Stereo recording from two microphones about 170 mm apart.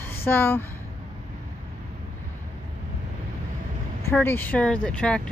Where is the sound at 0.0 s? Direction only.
10° left (ahead or behind).